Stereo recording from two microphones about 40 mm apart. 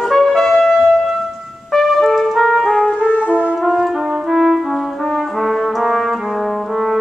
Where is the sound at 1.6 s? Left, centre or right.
Centre.